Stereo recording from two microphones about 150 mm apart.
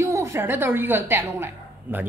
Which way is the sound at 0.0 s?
20° right (ahead or behind).